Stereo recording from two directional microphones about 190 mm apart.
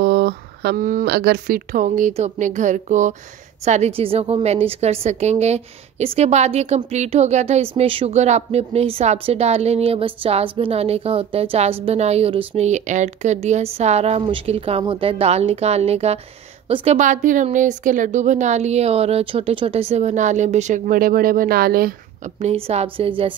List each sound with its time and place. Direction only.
0.0 s a woman's voice: 60° right (ahead or behind)
22.4 s a woman's voice: 35° right (ahead or behind)